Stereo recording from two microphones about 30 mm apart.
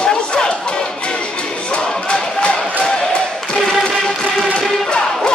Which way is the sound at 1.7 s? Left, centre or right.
Left.